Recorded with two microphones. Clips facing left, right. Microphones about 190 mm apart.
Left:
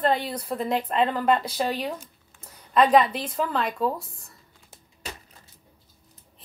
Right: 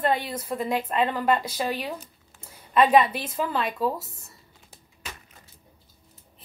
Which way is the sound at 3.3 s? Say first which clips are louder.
Left 1 dB; 5° right (ahead or behind).